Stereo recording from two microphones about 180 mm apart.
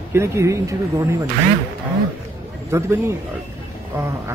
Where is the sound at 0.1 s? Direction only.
15° right (ahead or behind).